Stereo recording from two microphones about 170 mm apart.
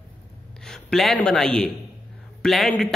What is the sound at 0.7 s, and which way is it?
A man's voice, centre (ahead or behind).